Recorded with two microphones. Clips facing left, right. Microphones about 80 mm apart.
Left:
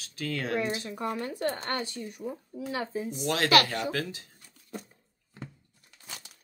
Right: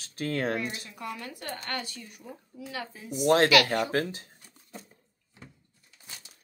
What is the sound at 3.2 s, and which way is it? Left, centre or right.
Speech, right.